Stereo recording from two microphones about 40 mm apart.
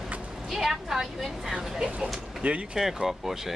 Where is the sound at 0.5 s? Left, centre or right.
Centre.